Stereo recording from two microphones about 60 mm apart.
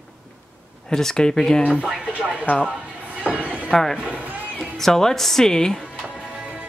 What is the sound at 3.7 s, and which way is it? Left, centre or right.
Speech, centre.